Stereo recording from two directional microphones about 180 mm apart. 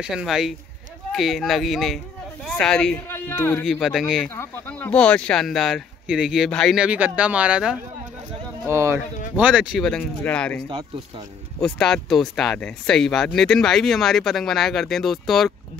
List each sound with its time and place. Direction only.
0.0 s a man's voice: 5° right (ahead or behind); by 3.6 s 10° left (ahead or behind)
3.8 s speech: centre (ahead or behind)
4.3 s speech: 10° left (ahead or behind)
10.7 s speech: 20° right (ahead or behind)
11.6 s speech: 5° left (ahead or behind)